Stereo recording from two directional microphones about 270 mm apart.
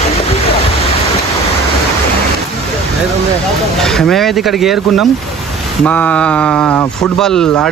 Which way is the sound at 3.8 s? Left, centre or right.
Centre.